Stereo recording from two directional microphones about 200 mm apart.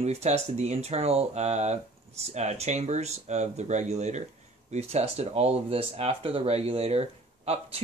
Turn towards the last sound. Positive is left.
turn(degrees=-30)  # may be behind; listen again after turning